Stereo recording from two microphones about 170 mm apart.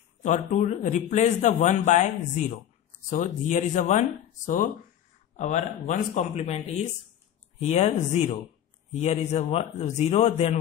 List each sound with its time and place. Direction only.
0.2 s a man's voice: 45° left (ahead or behind)